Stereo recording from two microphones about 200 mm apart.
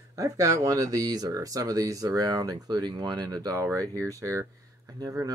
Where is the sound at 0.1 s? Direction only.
15° right (ahead or behind).